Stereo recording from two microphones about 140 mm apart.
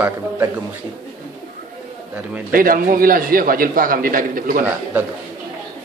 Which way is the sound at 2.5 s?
90° right.